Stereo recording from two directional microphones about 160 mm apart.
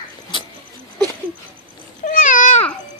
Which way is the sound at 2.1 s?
55° left (ahead or behind).